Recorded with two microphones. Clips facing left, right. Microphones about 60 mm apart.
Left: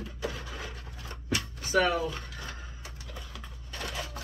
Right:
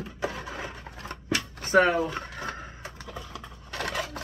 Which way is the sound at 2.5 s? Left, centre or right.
Right.